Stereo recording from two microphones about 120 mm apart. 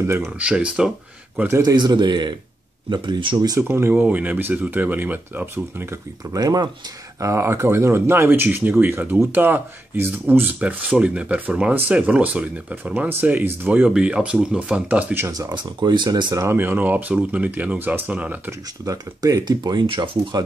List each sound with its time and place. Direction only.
0.0 s speech: 20° right (ahead or behind)
0.4 s speech: 10° right (ahead or behind)
1.5 s speech: 30° right (ahead or behind)
3.6 s speech: 20° right (ahead or behind)
6.3 s speech: 30° right (ahead or behind); by 15.2 s 10° right (ahead or behind)
15.2 s speech: 25° right (ahead or behind)
15.5 s speech: 40° right (ahead or behind)
16.4 s speech: 15° right (ahead or behind)
18.9 s speech: 30° right (ahead or behind)